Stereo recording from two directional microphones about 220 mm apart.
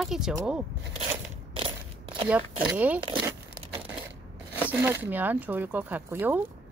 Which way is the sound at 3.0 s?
20° right (ahead or behind).